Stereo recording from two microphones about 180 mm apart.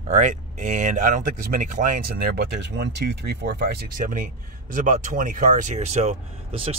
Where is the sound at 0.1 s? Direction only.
45° right (ahead or behind); by 3.8 s 65° right (ahead or behind).